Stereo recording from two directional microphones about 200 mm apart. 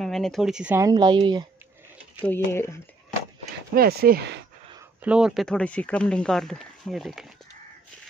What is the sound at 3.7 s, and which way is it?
Speech, 50° right (ahead or behind).